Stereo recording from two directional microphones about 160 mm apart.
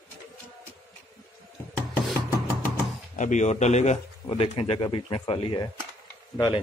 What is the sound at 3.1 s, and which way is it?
Speech, 50° left (ahead or behind).